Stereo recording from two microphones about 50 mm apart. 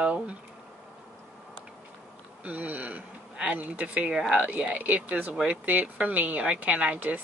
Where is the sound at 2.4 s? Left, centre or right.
Right.